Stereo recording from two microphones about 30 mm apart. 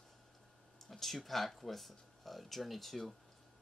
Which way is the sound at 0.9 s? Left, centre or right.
Centre.